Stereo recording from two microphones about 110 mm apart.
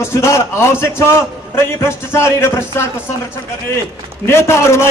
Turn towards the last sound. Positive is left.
turn(degrees=25)  # may be behind; listen again after turning